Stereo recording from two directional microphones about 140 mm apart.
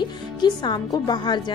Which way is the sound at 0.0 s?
30° left (ahead or behind).